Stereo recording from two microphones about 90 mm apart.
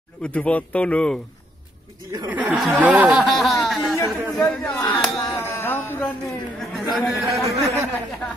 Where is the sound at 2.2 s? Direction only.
15° right (ahead or behind).